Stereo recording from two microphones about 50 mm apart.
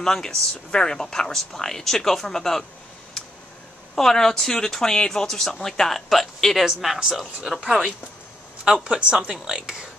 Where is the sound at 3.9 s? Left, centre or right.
Centre.